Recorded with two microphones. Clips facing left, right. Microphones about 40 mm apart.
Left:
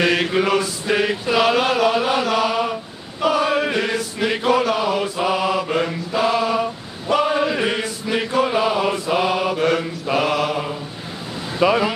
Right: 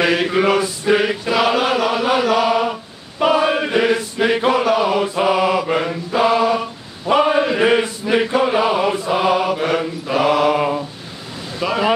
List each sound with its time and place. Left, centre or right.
0.0 s chant: centre
3.3 s choir: right
3.7 s chant: centre
5.8 s mantra: centre
7.1 s a sound: right
7.7 s mantra: right
8.2 s mantra: centre
11.6 s vehicle: centre